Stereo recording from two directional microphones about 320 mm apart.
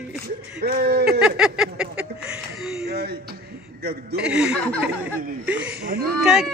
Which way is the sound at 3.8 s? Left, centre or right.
Right.